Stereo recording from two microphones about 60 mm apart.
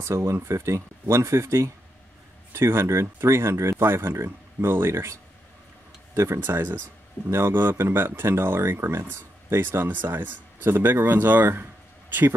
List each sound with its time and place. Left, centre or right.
0.0 s speech: right
6.4 s speech: right